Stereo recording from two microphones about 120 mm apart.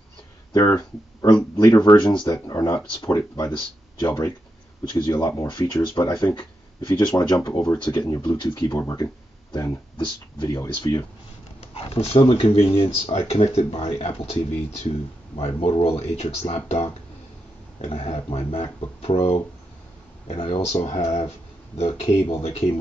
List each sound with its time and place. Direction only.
0.5 s speech: 30° left (ahead or behind)
11.6 s speech: 55° left (ahead or behind)